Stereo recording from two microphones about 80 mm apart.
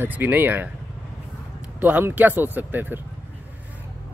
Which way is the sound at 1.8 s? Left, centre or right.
Right.